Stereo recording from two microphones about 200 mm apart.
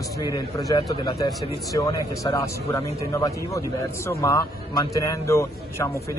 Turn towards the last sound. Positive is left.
turn(degrees=15)  # may be behind; listen again after turning